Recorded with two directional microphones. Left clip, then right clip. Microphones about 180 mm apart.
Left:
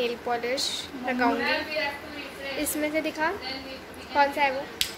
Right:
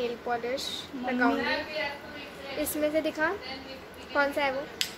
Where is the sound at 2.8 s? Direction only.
15° right (ahead or behind).